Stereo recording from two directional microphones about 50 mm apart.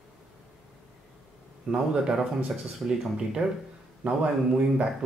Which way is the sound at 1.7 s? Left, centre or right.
Right.